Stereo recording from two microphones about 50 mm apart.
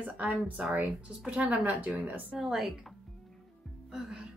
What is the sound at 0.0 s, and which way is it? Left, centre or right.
A woman's voice, right.